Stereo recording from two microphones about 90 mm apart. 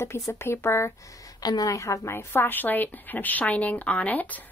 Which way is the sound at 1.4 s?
45° left (ahead or behind).